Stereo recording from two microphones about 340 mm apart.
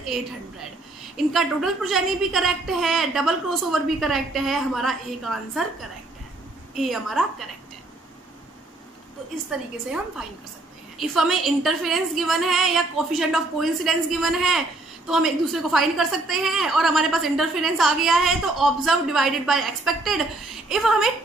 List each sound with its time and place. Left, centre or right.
1.1 s a woman's voice: centre
9.5 s a woman's voice: centre